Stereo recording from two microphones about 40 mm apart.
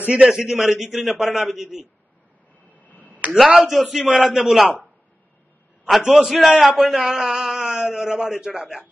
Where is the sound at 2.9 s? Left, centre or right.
Left.